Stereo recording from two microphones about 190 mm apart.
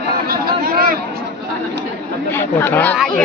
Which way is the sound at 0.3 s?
50° right (ahead or behind).